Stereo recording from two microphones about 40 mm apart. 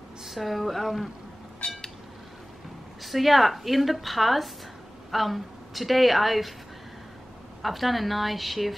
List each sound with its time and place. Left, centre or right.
0.2 s speech: centre
1.6 s a sound: left
3.0 s speech: centre
7.6 s speech: centre